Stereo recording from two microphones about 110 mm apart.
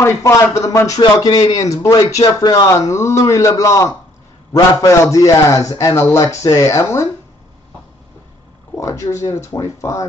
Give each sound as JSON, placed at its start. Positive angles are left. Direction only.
{"t": 0.0, "sound": "a man's voice", "side_deg": 25}
{"t": 8.7, "sound": "a man's voice", "side_deg": 30}